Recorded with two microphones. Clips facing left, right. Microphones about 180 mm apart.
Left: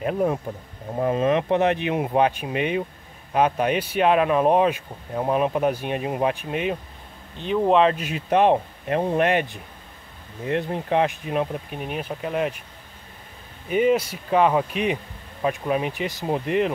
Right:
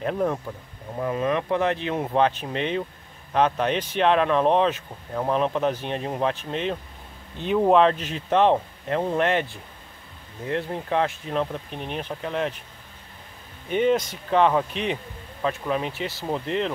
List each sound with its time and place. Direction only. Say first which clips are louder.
0.0 s speech: left 2 dB; 10° left (ahead or behind)
0.5 s speech: left 3 dB; 30° left (ahead or behind); by 6.8 s 10° left (ahead or behind)
7.5 s speech: even; centre (ahead or behind)
13.7 s speech: left 2 dB; 5° left (ahead or behind)